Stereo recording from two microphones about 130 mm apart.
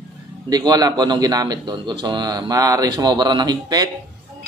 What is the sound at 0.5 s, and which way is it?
A man's voice, 30° right (ahead or behind).